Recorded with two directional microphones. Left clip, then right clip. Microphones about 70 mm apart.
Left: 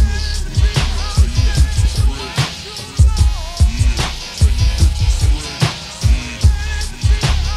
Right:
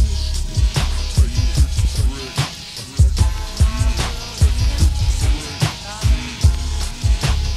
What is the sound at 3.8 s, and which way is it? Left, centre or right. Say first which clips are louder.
Music: left 4 dB; left.